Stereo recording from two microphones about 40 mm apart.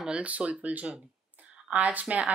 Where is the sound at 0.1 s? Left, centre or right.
Right.